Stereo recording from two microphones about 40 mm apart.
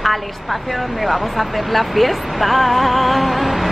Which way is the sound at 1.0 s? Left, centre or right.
Centre.